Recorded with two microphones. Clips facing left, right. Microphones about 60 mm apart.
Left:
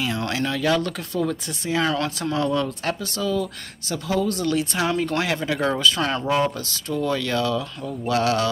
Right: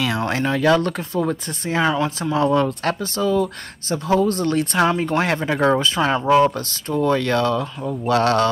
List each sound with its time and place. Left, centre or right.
0.3 s speech: right
1.8 s speech: centre
2.4 s speech: right
5.9 s speech: right
6.4 s speech: right